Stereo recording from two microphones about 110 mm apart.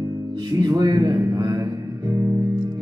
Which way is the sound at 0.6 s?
40° right (ahead or behind).